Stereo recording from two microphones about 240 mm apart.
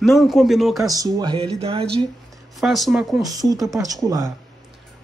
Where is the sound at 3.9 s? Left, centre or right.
Centre.